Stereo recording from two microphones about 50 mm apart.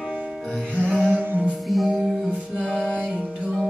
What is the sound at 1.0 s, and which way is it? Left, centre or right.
Music, right.